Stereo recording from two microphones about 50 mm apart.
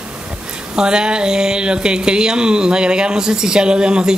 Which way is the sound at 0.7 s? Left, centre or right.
Centre.